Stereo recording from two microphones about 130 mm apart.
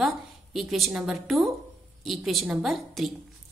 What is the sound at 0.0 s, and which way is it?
A woman's voice, centre (ahead or behind).